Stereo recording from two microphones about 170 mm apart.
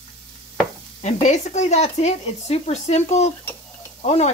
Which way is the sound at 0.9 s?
45° left (ahead or behind).